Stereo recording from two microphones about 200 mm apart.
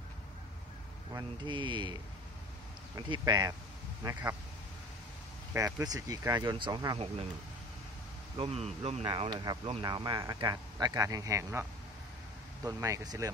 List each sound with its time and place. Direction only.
1.1 s speech: 25° right (ahead or behind)
3.1 s speech: 20° right (ahead or behind)
5.5 s speech: 15° right (ahead or behind)
8.4 s speech: 30° right (ahead or behind); by 11.6 s 15° right (ahead or behind)
12.6 s speech: 15° right (ahead or behind)